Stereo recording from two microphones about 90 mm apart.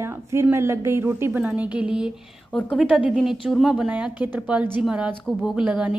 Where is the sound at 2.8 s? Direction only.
5° right (ahead or behind).